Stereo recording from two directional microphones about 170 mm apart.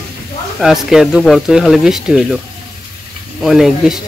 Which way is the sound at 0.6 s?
Centre (ahead or behind).